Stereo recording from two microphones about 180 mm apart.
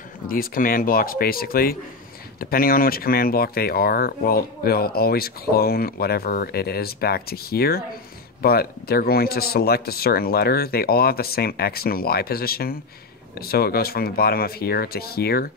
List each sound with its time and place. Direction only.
0.3 s speech: 55° left (ahead or behind)